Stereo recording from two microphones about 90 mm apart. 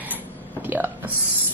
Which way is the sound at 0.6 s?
20° right (ahead or behind).